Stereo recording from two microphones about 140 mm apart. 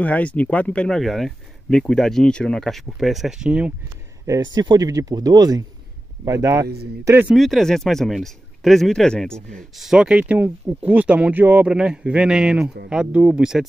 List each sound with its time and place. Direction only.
0.0 s a man's voice: 10° left (ahead or behind); by 3.7 s 5° right (ahead or behind)
4.3 s speech: 30° right (ahead or behind)
7.3 s a man's voice: centre (ahead or behind)